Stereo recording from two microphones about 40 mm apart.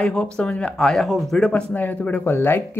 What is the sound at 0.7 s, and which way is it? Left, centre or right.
Speech, centre.